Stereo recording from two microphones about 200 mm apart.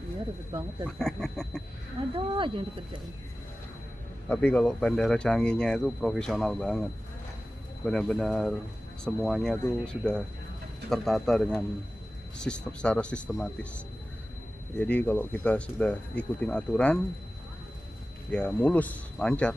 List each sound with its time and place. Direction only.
0.5 s speech: 20° right (ahead or behind)
0.8 s speech: centre (ahead or behind)
2.1 s speech: 25° right (ahead or behind)
4.3 s speech: 10° left (ahead or behind)
18.3 s speech: 5° left (ahead or behind)